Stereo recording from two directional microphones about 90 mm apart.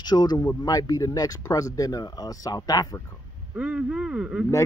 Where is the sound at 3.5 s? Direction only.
10° right (ahead or behind).